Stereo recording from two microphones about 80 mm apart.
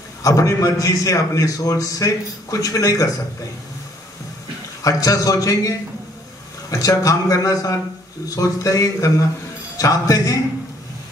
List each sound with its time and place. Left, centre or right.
0.2 s a man's voice: left
4.8 s a man's voice: left